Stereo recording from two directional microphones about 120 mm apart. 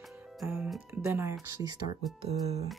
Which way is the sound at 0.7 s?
20° right (ahead or behind).